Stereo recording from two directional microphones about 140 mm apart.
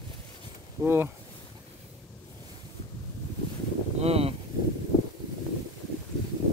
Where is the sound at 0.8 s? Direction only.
15° right (ahead or behind).